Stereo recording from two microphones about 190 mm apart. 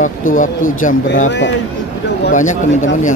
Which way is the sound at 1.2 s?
70° left (ahead or behind).